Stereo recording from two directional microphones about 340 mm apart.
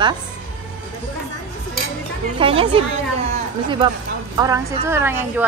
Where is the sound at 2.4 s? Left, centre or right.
Centre.